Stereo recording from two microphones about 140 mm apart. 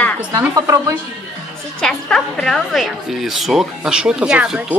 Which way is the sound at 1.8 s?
5° left (ahead or behind).